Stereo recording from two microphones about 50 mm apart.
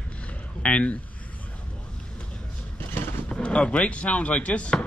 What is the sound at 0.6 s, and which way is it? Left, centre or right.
Speech, left.